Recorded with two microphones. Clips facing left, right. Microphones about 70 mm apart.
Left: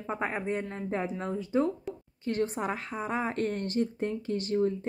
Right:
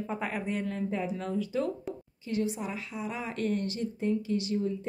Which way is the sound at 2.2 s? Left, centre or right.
Left.